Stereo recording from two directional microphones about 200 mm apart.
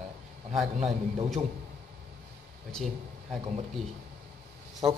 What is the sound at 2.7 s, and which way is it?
Speech, centre (ahead or behind).